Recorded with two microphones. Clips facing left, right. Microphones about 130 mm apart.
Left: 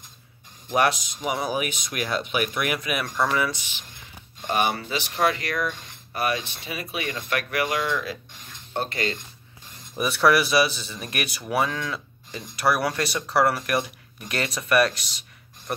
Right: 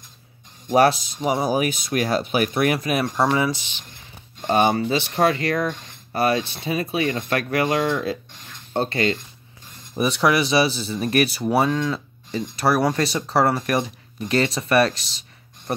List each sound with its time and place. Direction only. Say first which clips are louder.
0.7 s speech: right 6 dB; 35° right (ahead or behind)
9.9 s speech: right 1 dB; 20° right (ahead or behind)